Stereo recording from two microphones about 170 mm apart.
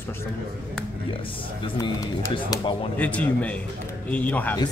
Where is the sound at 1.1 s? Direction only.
30° left (ahead or behind).